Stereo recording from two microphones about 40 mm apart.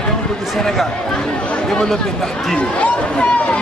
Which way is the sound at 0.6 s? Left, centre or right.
Centre.